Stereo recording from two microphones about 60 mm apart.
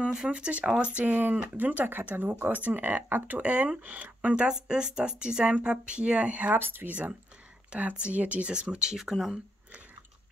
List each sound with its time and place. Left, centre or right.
0.0 s speech: centre
4.5 s speech: centre
6.6 s speech: right
7.7 s speech: right